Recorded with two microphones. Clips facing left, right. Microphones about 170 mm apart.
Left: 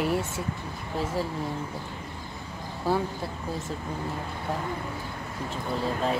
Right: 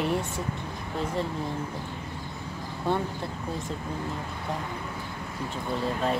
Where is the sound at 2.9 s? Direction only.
5° left (ahead or behind).